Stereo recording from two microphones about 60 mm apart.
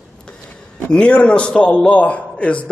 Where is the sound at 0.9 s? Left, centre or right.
Centre.